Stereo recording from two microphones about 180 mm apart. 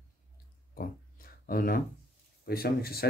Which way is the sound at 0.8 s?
55° left (ahead or behind).